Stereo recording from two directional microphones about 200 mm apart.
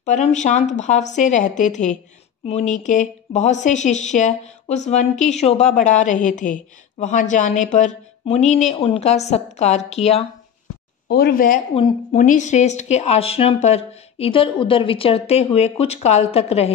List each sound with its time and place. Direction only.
0.0 s a woman's voice: 35° left (ahead or behind)
11.1 s speech: 50° left (ahead or behind)
11.7 s a woman's voice: 30° left (ahead or behind)